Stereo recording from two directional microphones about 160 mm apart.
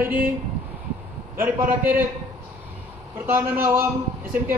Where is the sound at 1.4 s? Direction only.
10° right (ahead or behind).